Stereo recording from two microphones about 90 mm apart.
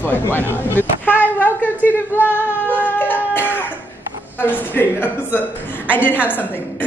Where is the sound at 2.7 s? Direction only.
20° left (ahead or behind).